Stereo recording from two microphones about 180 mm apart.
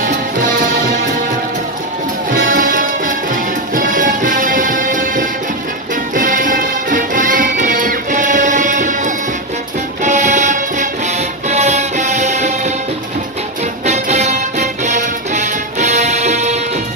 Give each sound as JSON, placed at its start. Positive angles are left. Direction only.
{"t": 2.4, "sound": "music", "side_deg": -50}
{"t": 13.8, "sound": "music", "side_deg": -40}